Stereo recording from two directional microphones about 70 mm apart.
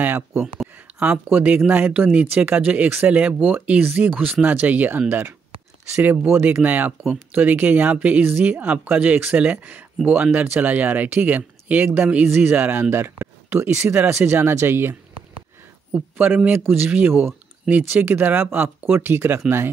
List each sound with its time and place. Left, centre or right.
0.0 s a sound: right
1.3 s speech: right
6.6 s speech: right
15.9 s a man's voice: right